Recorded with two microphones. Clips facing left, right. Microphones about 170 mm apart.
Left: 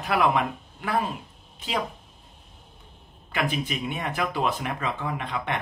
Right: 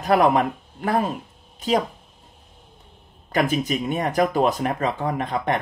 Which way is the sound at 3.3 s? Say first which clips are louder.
Right 6 dB; 40° right (ahead or behind).